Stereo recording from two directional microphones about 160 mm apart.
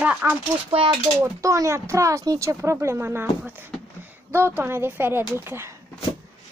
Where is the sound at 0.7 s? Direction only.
35° right (ahead or behind).